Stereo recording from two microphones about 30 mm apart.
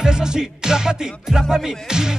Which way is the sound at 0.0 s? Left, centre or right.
Right.